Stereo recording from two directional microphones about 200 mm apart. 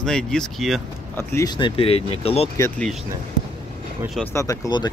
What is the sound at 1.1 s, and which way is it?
Speech, 15° left (ahead or behind).